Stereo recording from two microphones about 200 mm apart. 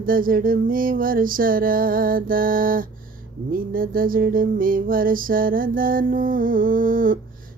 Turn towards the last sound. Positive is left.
turn(degrees=-45)  # may be behind; listen again after turning